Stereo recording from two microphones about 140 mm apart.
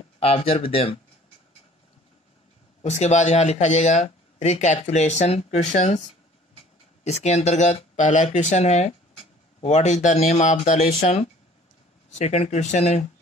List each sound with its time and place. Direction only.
0.2 s speech: 45° left (ahead or behind)
2.8 s speech: 55° left (ahead or behind)
7.1 s speech: 55° left (ahead or behind)